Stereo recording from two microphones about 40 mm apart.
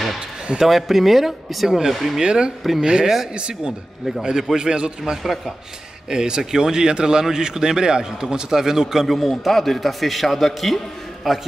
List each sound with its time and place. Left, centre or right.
0.6 s a man's voice: centre
2.2 s speech: right
9.0 s a man's voice: centre